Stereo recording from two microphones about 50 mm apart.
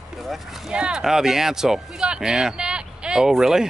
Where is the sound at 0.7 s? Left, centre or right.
Centre.